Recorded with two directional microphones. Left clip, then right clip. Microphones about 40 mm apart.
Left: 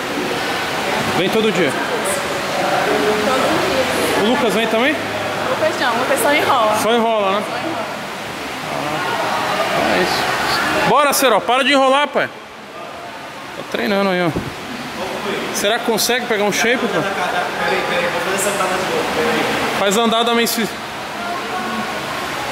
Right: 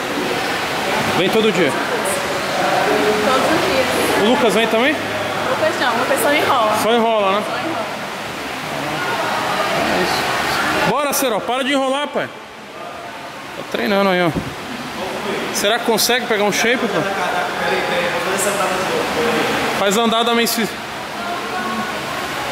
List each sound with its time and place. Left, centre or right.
0.9 s speech: centre
2.6 s a sound: centre
5.4 s speech: centre
9.8 s a sound: centre
11.1 s speech: left
13.7 s speech: centre
15.5 s speech: centre